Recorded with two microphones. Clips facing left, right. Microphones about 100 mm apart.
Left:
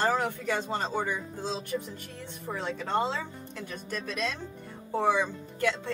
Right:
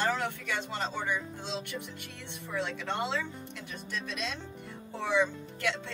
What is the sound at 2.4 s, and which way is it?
A woman's voice, 40° left (ahead or behind).